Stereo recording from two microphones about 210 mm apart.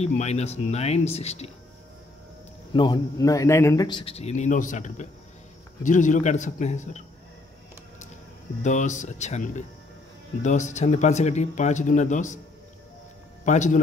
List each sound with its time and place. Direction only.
0.0 s speech: 30° left (ahead or behind)
2.7 s speech: 20° left (ahead or behind)
8.6 s speech: 35° left (ahead or behind)
13.5 s speech: 35° left (ahead or behind)